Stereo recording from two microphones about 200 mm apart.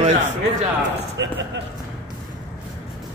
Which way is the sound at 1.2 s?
60° right (ahead or behind).